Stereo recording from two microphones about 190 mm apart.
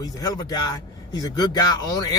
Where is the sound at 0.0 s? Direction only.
20° left (ahead or behind).